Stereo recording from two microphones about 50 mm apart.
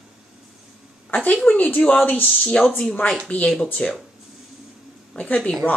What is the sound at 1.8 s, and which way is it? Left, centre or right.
Speech, left.